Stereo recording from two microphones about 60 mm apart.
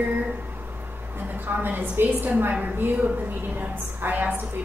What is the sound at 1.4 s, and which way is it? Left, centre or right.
A woman's voice, right.